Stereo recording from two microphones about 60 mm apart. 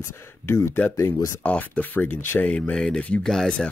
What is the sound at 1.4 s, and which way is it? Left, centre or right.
Speech, left.